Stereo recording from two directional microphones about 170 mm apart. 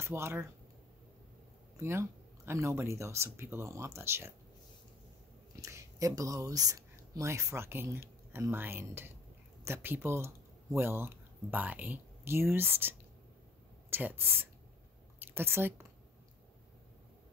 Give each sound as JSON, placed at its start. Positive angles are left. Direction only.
{"t": 0.0, "sound": "speech", "side_deg": -15}
{"t": 1.8, "sound": "speech", "side_deg": -15}
{"t": 5.6, "sound": "speech", "side_deg": -20}